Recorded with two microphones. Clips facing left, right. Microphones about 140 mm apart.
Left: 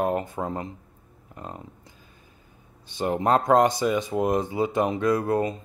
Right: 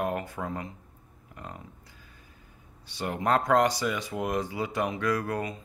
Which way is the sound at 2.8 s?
25° left (ahead or behind).